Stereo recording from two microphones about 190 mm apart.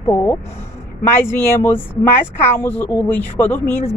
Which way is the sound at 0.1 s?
15° left (ahead or behind).